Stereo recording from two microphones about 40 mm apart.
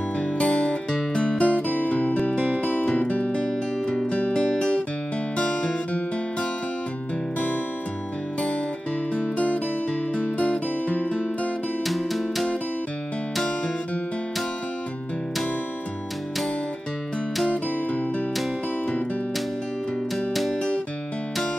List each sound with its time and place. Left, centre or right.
0.4 s music: left
1.7 s music: left
2.6 s music: left
3.4 s music: left
9.2 s music: left
11.8 s music: centre